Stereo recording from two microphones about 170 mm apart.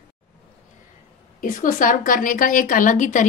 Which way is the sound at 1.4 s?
50° left (ahead or behind).